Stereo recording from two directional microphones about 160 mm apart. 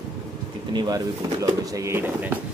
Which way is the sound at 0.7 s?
25° right (ahead or behind).